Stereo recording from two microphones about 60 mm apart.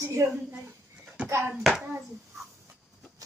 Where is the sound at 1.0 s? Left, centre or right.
Centre.